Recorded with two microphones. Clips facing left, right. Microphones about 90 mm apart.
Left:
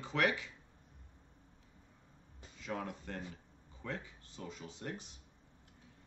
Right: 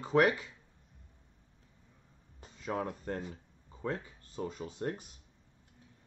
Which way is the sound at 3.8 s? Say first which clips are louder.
Right 6 dB; 40° right (ahead or behind).